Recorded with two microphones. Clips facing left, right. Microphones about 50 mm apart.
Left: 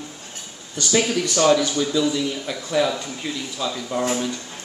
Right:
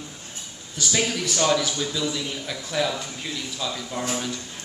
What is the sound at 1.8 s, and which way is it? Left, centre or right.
Speech, centre.